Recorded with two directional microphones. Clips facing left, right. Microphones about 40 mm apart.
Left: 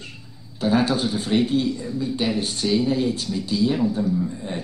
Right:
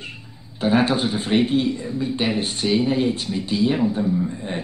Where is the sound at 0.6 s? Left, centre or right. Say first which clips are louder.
Right 2 dB; right.